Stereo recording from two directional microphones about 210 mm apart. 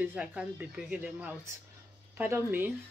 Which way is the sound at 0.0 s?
5° right (ahead or behind).